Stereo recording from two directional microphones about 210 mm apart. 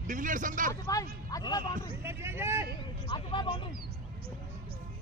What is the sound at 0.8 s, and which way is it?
Speech, 15° left (ahead or behind).